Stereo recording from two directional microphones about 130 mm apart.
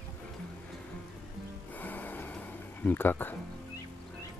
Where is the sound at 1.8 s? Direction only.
15° left (ahead or behind).